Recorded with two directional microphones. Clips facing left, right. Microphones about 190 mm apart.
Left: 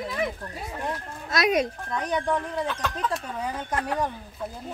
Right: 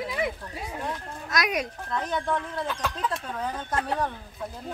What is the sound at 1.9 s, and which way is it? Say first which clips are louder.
Speech: left 2 dB; 15° left (ahead or behind).